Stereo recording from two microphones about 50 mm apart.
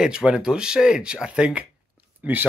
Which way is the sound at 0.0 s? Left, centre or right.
Centre.